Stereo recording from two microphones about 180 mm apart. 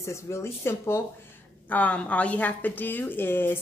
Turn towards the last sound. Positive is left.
turn(degrees=10)  # may be behind; listen again after turning